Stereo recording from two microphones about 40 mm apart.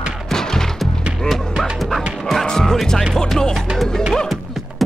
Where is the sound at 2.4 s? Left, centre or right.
Centre.